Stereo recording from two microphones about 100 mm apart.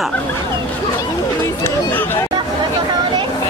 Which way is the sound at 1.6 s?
20° left (ahead or behind).